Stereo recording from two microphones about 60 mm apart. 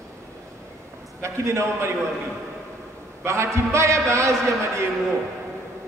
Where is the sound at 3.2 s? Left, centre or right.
Right.